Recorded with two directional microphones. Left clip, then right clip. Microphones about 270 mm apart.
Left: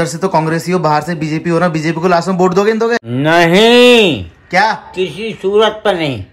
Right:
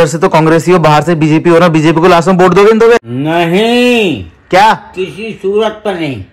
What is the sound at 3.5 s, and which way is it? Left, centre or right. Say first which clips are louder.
Speech: left 3 dB; left.